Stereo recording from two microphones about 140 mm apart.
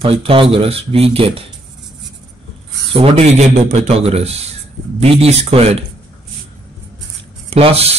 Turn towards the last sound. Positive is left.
turn(degrees=-45)  # may be behind; listen again after turning